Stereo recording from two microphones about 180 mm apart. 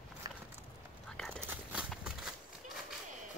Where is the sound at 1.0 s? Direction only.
5° left (ahead or behind).